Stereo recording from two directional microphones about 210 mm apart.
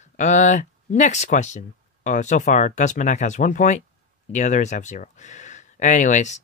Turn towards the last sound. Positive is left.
turn(degrees=35)  # may be behind; listen again after turning